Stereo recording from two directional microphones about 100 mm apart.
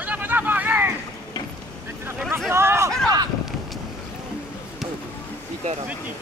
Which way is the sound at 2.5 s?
25° right (ahead or behind).